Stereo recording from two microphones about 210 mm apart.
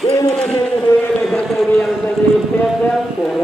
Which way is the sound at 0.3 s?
Centre (ahead or behind).